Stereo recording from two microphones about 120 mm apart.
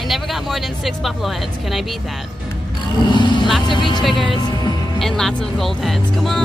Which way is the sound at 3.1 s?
40° left (ahead or behind).